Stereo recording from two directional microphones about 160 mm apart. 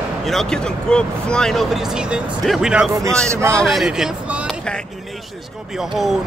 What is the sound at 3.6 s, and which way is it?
Speech, centre (ahead or behind).